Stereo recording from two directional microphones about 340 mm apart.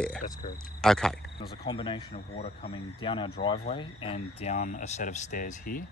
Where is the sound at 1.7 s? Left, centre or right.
Centre.